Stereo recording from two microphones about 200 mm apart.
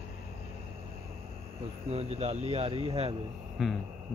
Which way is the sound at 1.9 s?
30° right (ahead or behind).